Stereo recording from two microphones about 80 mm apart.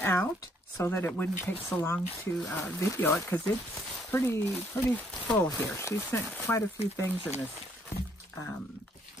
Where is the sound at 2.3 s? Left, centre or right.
Centre.